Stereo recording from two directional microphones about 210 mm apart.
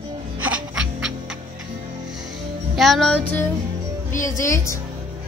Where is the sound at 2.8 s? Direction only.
Centre (ahead or behind).